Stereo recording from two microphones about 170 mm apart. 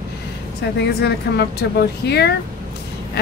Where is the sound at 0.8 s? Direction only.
75° left (ahead or behind).